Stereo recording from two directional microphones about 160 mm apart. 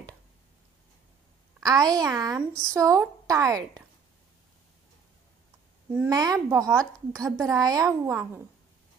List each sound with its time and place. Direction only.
1.6 s speech: 25° right (ahead or behind)
6.0 s speech: 25° right (ahead or behind)